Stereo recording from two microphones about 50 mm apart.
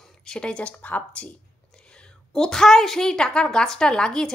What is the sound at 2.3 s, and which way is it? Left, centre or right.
A woman's voice, centre.